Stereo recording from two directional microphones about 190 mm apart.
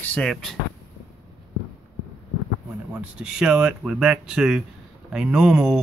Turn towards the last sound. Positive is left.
turn(degrees=-5)  # may be behind; listen again after turning